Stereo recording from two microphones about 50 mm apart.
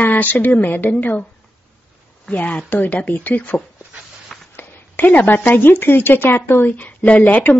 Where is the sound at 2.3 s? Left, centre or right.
Left.